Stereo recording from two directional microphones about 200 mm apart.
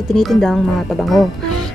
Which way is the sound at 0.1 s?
Centre (ahead or behind).